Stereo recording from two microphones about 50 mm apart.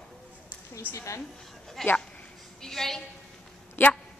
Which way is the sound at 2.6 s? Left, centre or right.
Centre.